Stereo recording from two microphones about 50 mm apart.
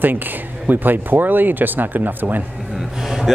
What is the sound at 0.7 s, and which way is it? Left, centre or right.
Speech, right.